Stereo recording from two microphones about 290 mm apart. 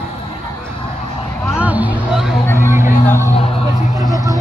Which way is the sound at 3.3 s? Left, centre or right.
Left.